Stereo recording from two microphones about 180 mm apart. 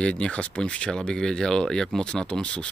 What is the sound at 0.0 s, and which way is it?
Speech, 5° left (ahead or behind).